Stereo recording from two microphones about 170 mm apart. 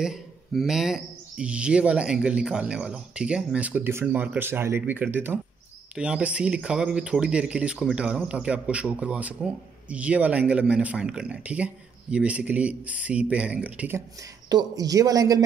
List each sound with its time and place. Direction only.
0.0 s speech: centre (ahead or behind)
14.5 s speech: 25° right (ahead or behind)